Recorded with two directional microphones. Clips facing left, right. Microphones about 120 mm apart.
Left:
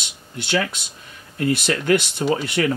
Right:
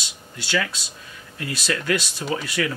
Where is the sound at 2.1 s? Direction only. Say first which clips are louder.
Left 6 dB; 55° left (ahead or behind).